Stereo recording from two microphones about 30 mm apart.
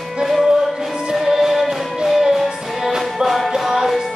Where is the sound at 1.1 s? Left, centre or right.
Centre.